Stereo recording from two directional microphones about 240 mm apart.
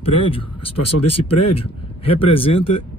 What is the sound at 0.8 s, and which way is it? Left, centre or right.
Speech, left.